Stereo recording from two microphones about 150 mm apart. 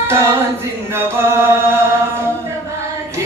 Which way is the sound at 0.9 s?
15° right (ahead or behind).